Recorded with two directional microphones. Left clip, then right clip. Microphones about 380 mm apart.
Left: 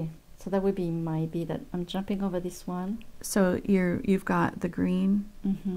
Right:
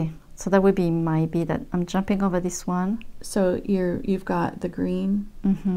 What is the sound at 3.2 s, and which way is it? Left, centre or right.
Speech, left.